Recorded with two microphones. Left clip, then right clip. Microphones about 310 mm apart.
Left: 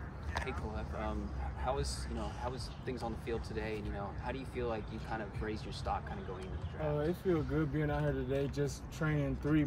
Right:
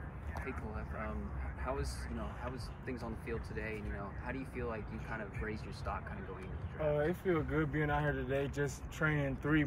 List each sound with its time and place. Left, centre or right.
1.6 s speech: left
2.9 s speech: left
6.9 s speech: centre